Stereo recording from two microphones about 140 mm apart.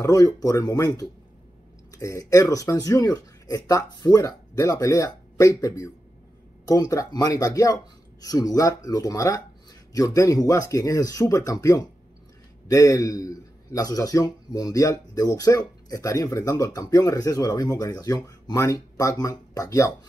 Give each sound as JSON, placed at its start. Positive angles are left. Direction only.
{"t": 0.0, "sound": "a man's voice", "side_deg": 25}